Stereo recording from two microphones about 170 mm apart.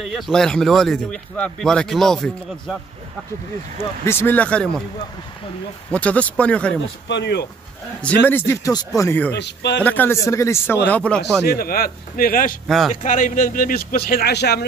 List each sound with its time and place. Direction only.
0.0 s speech: centre (ahead or behind)
4.0 s speech: 15° left (ahead or behind)
5.9 s speech: 10° left (ahead or behind)
7.1 s speech: 90° left
8.0 s speech: 10° left (ahead or behind)
9.3 s a man's voice: 90° left
9.8 s speech: 10° left (ahead or behind)
11.4 s speech: 65° left (ahead or behind)
12.6 s speech: centre (ahead or behind)
13.0 s speech: 50° left (ahead or behind); by 14.6 s 75° left (ahead or behind)